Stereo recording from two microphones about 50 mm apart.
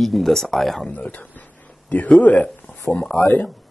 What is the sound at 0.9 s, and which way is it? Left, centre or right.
A man's voice, left.